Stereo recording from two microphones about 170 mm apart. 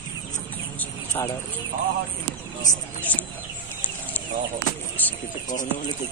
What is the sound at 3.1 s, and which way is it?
Speech, 10° left (ahead or behind).